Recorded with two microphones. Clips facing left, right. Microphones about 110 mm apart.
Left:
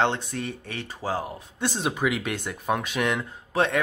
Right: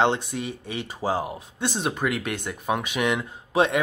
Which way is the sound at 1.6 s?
Centre (ahead or behind).